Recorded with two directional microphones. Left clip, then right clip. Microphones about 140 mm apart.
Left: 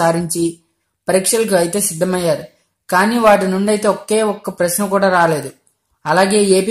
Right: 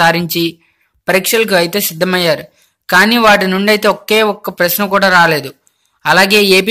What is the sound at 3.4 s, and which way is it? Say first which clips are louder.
Speech: right 5 dB; centre (ahead or behind).